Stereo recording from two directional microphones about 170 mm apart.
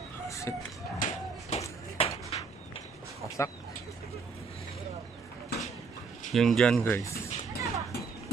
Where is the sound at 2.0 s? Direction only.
35° left (ahead or behind).